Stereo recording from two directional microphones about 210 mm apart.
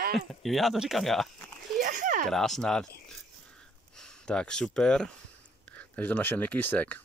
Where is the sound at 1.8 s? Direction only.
40° right (ahead or behind).